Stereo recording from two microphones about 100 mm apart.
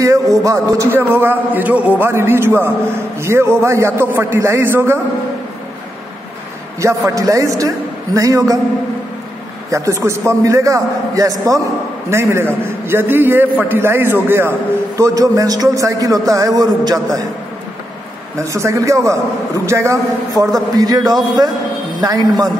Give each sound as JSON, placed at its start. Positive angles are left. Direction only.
{"t": 0.0, "sound": "a man's voice", "side_deg": -35}
{"t": 6.8, "sound": "a man's voice", "side_deg": -30}
{"t": 9.7, "sound": "a man's voice", "side_deg": -30}
{"t": 15.0, "sound": "a man's voice", "side_deg": -30}
{"t": 18.4, "sound": "a man's voice", "side_deg": -30}